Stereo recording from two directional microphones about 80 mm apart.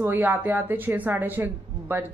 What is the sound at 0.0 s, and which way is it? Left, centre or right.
A woman's voice, right.